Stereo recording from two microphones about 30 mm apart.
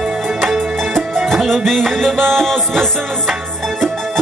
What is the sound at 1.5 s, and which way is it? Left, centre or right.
Music, centre.